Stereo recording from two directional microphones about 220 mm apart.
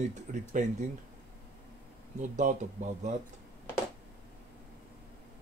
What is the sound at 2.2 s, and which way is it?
Speech, 35° right (ahead or behind).